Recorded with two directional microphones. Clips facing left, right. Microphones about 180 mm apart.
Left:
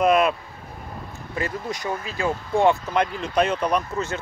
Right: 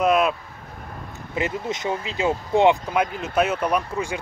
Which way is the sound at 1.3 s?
20° right (ahead or behind).